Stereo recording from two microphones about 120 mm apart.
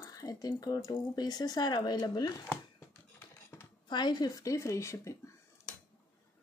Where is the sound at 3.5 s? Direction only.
25° left (ahead or behind).